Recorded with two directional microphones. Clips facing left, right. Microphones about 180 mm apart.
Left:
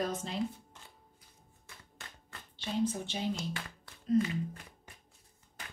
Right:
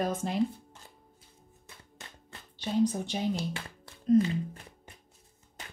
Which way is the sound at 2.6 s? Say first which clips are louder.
Right 5 dB; 40° right (ahead or behind).